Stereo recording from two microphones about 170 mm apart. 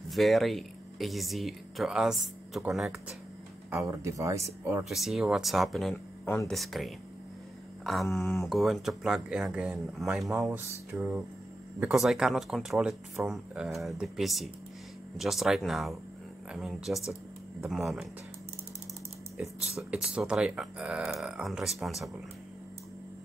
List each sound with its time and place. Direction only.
0.1 s speech: centre (ahead or behind)
3.7 s speech: 15° right (ahead or behind)
4.8 s speech: centre (ahead or behind)
6.2 s speech: 10° left (ahead or behind)
6.5 s speech: centre (ahead or behind)
19.3 s speech: centre (ahead or behind)